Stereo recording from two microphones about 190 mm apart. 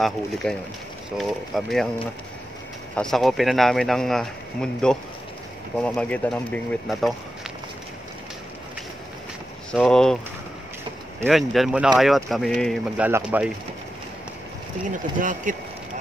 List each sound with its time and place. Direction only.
0.0 s speech: centre (ahead or behind)
3.0 s speech: centre (ahead or behind)
9.7 s speech: 5° left (ahead or behind)
11.2 s speech: centre (ahead or behind)
14.9 s speech: 45° right (ahead or behind)